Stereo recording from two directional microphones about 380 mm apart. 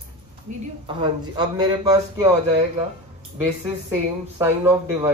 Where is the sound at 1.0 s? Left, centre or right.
Centre.